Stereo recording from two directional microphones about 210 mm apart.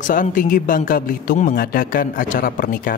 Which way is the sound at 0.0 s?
40° left (ahead or behind).